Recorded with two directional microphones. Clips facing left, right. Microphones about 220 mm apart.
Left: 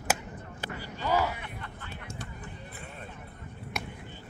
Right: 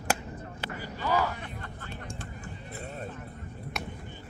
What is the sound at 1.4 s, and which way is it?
Vehicle, 40° right (ahead or behind).